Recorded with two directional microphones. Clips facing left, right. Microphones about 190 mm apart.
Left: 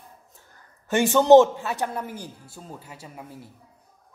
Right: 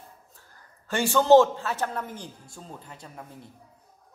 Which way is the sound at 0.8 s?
20° left (ahead or behind).